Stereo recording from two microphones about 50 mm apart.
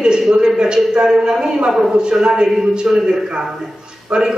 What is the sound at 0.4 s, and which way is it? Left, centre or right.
A man's voice, centre.